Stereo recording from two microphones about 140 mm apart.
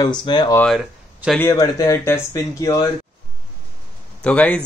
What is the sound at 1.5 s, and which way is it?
Speech, 20° left (ahead or behind).